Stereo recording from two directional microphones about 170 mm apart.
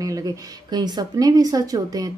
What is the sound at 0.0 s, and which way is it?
Speech, 20° right (ahead or behind).